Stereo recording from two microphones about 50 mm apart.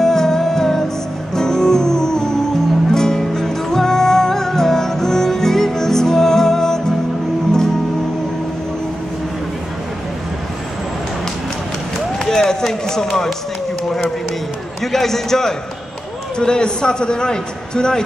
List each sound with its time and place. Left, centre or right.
0.0 s music: centre
12.3 s music: centre
14.8 s a man's voice: centre